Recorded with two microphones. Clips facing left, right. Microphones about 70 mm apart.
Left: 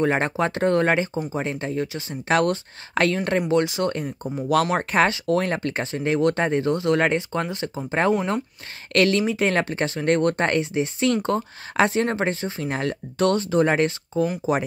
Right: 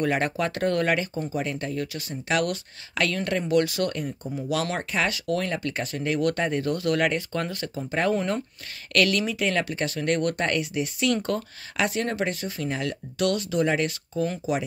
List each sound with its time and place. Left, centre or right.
0.0 s speech: left
3.9 s speech: left